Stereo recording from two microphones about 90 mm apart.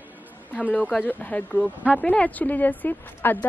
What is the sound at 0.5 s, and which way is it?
A woman's voice, 15° left (ahead or behind).